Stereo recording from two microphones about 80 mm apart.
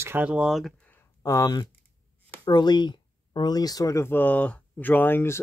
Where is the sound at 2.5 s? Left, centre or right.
Left.